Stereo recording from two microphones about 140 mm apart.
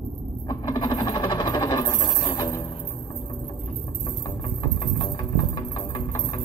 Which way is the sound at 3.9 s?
25° left (ahead or behind).